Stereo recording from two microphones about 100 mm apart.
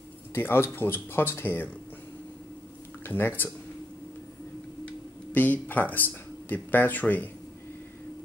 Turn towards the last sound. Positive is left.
turn(degrees=15)  # may be behind; listen again after turning